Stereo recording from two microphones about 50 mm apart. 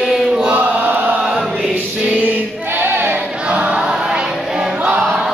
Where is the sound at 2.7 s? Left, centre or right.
Right.